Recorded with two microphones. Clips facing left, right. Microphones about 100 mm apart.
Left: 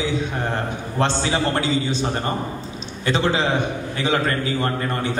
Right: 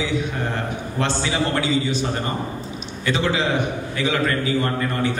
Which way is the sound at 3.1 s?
35° left (ahead or behind).